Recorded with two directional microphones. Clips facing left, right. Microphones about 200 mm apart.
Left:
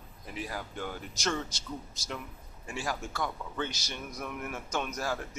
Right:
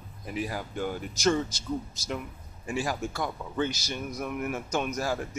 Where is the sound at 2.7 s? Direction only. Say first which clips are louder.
Right 5 dB; 15° right (ahead or behind).